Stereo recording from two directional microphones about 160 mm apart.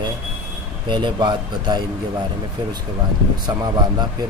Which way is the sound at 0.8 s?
30° right (ahead or behind).